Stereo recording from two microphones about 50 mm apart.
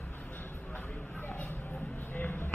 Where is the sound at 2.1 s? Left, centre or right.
Left.